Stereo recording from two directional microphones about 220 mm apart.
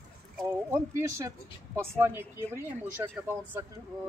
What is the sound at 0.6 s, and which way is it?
Speech, 15° right (ahead or behind).